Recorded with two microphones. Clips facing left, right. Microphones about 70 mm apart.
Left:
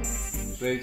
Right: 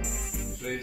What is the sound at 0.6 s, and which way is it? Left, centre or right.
Music, left.